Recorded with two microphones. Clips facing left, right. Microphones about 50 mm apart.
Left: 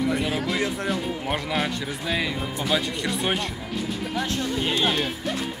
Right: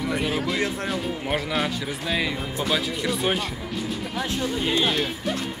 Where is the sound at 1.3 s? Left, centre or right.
Centre.